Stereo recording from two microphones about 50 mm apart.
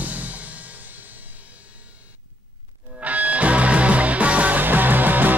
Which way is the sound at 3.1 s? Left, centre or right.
Right.